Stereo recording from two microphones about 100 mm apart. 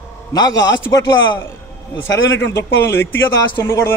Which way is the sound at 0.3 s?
40° left (ahead or behind).